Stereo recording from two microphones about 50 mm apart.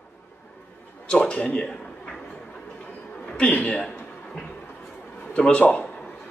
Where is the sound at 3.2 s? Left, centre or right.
Left.